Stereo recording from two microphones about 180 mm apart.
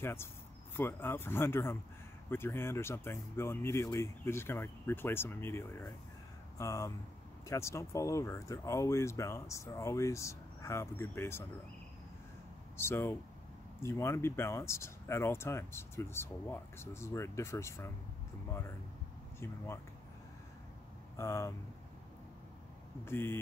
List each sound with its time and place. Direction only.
0.0 s speech: 15° left (ahead or behind)
12.7 s speech: 15° left (ahead or behind)
19.4 s speech: 15° left (ahead or behind)
21.2 s speech: 15° left (ahead or behind)
23.0 s speech: 15° left (ahead or behind)